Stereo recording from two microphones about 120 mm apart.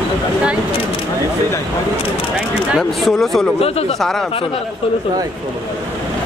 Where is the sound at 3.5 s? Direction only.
55° left (ahead or behind).